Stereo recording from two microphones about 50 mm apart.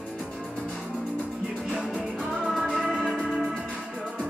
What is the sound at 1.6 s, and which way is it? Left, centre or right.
Music, centre.